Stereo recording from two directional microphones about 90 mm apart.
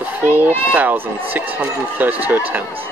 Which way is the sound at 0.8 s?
20° right (ahead or behind).